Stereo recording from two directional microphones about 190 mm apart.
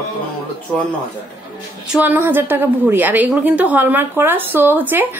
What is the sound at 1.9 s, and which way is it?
A woman's voice, 10° right (ahead or behind).